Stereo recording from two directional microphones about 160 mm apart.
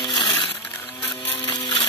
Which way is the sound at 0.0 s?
30° left (ahead or behind).